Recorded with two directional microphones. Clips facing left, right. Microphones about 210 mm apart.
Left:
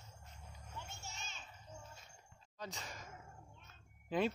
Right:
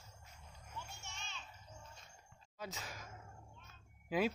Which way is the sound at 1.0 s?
40° left (ahead or behind).